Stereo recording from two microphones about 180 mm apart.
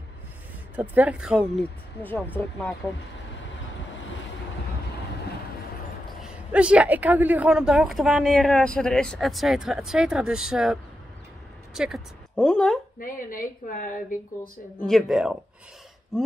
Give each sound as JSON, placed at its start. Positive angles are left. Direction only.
{"t": 0.7, "sound": "a woman's voice", "side_deg": -10}
{"t": 1.6, "sound": "speech", "side_deg": 10}
{"t": 6.2, "sound": "a woman's voice", "side_deg": -5}
{"t": 13.0, "sound": "a woman's voice", "side_deg": 50}
{"t": 14.9, "sound": "a woman's voice", "side_deg": 0}